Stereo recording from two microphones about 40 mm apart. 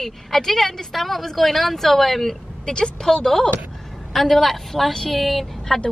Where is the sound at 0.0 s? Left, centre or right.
Centre.